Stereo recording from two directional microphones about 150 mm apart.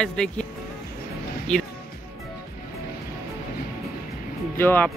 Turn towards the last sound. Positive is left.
turn(degrees=15)  # may be behind; listen again after turning